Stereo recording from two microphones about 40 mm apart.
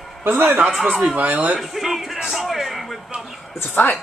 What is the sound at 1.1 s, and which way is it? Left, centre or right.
Speech, right.